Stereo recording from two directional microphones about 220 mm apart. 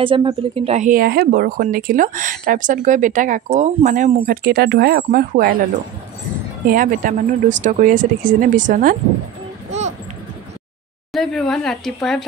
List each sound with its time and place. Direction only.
0.0 s speech: 20° right (ahead or behind); by 5.6 s 40° right (ahead or behind)
6.7 s speech: 40° right (ahead or behind)
9.7 s a sound: 30° right (ahead or behind)
11.1 s speech: centre (ahead or behind)